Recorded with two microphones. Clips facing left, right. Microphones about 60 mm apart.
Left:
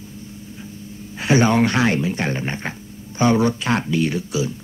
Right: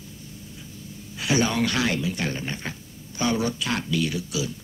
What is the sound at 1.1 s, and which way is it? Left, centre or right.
Speech, left.